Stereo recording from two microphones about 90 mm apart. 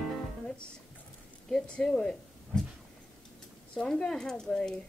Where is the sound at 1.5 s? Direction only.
5° left (ahead or behind).